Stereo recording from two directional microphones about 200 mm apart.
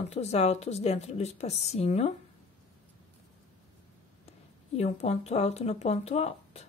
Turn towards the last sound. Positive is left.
turn(degrees=30)  # may be behind; listen again after turning